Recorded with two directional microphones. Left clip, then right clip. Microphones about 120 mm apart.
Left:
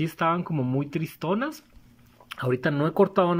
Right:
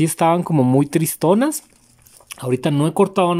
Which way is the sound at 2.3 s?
25° right (ahead or behind).